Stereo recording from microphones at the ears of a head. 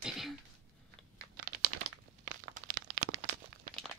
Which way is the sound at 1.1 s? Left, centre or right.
Right.